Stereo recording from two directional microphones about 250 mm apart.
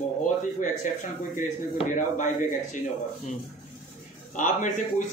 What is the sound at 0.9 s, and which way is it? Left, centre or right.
A man's voice, left.